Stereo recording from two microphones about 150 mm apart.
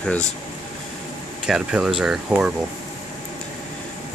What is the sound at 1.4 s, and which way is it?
Speech, 5° right (ahead or behind).